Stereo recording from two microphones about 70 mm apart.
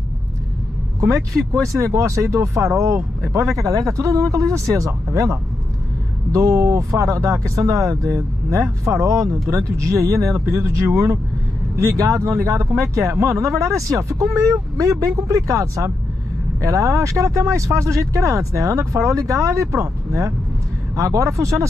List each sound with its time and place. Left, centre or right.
1.0 s speech: right